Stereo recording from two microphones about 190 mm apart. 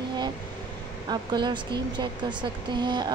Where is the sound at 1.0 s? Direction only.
25° right (ahead or behind).